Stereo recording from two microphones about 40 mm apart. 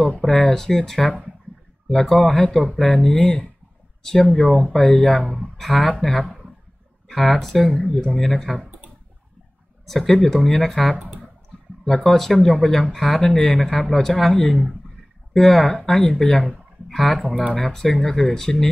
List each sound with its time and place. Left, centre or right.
0.3 s speech: centre
7.7 s speech: centre
9.8 s speech: centre